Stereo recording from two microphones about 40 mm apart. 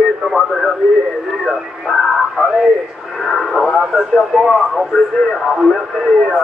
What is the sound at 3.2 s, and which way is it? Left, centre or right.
Speech, centre.